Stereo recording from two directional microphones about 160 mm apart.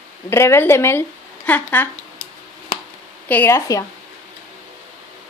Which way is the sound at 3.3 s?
15° left (ahead or behind).